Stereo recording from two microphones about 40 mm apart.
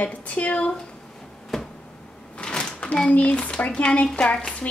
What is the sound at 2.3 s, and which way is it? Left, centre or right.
Door, left.